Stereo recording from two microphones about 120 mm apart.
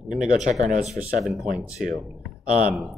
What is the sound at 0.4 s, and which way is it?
Speech, 90° right.